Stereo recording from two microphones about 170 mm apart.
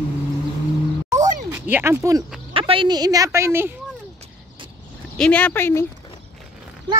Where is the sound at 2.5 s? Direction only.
30° right (ahead or behind); by 3.7 s 15° right (ahead or behind).